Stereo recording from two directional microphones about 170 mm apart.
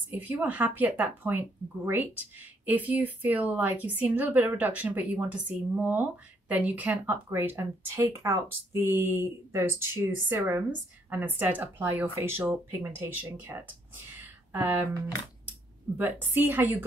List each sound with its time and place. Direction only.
0.1 s speech: 10° right (ahead or behind)
16.0 s speech: 10° right (ahead or behind)